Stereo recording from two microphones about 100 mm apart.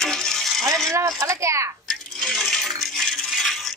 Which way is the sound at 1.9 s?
5° left (ahead or behind).